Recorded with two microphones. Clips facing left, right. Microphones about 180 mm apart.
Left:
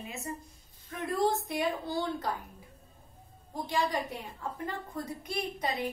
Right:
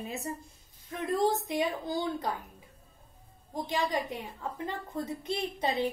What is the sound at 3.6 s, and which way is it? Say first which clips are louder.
A woman's voice: even; 20° right (ahead or behind).